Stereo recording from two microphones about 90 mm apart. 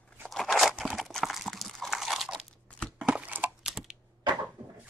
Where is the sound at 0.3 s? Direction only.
Centre (ahead or behind).